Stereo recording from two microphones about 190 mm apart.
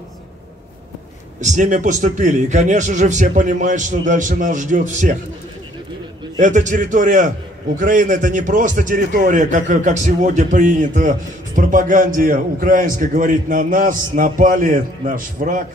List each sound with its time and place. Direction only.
1.4 s a man's voice: 40° right (ahead or behind)
6.4 s a man's voice: 40° right (ahead or behind)